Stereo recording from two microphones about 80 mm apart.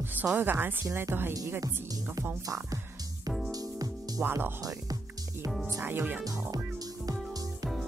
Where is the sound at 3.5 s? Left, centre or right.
Right.